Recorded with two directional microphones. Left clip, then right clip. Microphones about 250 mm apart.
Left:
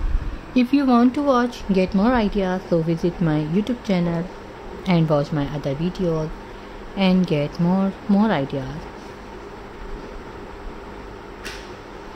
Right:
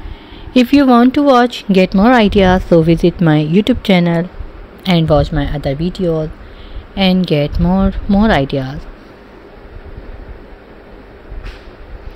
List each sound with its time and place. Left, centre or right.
0.6 s speech: right
4.8 s speech: centre